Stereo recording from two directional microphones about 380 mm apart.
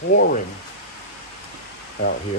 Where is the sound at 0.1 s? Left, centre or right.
Left.